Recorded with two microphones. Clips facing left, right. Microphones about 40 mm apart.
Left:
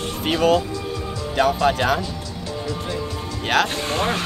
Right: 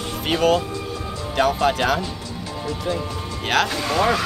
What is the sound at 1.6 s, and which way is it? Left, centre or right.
Speech, centre.